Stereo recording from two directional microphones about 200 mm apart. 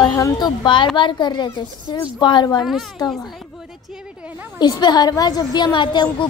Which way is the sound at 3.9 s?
5° right (ahead or behind).